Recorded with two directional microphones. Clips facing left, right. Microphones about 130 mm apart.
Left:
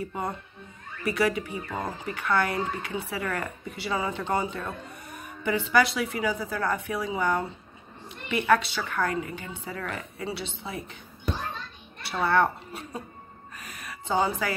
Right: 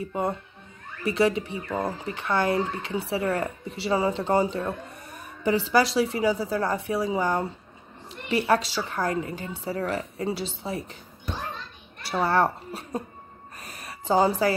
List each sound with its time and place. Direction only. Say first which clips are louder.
0.0 s a woman's voice: right 4 dB; 25° right (ahead or behind)
12.0 s a child's voice: right 1 dB; 35° right (ahead or behind)
13.6 s a sound: right 1 dB; 35° right (ahead or behind)